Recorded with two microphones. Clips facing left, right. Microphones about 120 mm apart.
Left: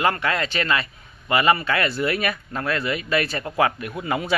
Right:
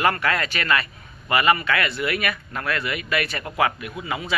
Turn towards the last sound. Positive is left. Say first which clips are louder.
# left 4 dB
turn(degrees=40)  # may be behind; listen again after turning